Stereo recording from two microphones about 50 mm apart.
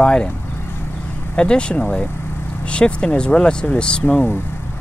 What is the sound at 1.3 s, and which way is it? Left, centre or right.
Speech, centre.